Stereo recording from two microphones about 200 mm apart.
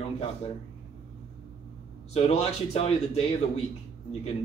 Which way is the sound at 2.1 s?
30° left (ahead or behind).